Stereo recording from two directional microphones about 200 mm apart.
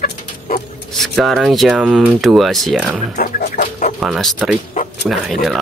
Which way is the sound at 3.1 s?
40° left (ahead or behind).